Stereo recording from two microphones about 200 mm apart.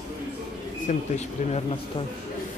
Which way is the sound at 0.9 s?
35° left (ahead or behind).